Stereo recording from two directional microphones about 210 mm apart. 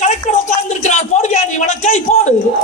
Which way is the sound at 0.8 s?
35° left (ahead or behind).